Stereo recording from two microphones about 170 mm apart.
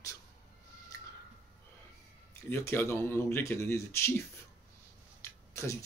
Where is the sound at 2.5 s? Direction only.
15° left (ahead or behind).